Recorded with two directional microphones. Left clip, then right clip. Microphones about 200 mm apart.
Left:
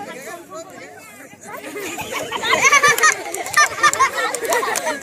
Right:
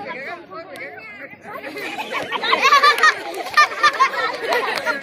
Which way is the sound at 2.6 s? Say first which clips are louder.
Even; 25° left (ahead or behind).